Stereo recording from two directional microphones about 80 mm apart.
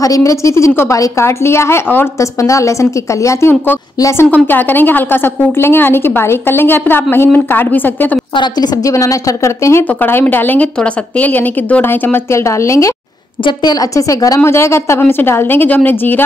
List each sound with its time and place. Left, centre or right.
0.0 s a woman's voice: left
2.1 s a woman's voice: left
8.8 s a woman's voice: left
14.4 s a woman's voice: left